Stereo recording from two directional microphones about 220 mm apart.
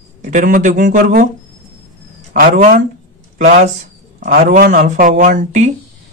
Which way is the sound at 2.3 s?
40° right (ahead or behind).